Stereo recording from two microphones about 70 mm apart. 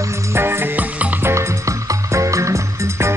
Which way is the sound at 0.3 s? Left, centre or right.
Right.